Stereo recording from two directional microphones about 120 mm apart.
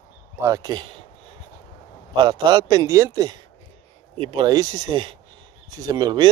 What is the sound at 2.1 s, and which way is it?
Speech, 40° right (ahead or behind).